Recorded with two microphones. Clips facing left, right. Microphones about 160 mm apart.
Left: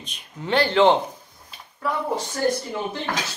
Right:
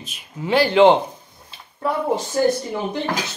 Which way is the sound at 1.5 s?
25° right (ahead or behind).